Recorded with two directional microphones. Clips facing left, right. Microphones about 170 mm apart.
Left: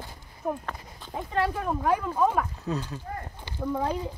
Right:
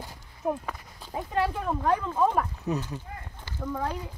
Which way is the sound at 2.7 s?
20° right (ahead or behind).